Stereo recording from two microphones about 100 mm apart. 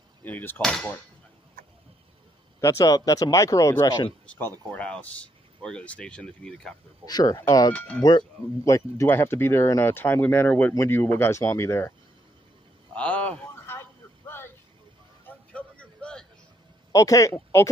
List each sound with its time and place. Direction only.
0.2 s speech: 20° left (ahead or behind)
0.6 s speech: 5° left (ahead or behind)
2.6 s speech: 35° left (ahead or behind)
4.4 s speech: 20° left (ahead or behind)
7.1 s speech: 40° left (ahead or behind)
12.9 s a sound: 15° left (ahead or behind)
13.7 s a sound: 25° left (ahead or behind)
15.2 s music: 10° left (ahead or behind)
16.9 s speech: 35° left (ahead or behind)